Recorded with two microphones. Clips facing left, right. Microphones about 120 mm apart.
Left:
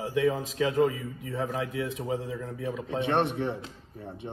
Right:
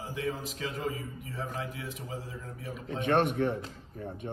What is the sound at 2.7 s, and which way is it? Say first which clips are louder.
A man's voice: left 1 dB; 25° left (ahead or behind).